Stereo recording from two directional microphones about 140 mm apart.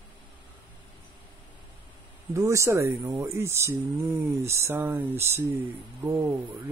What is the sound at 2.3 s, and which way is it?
Speech, 20° right (ahead or behind).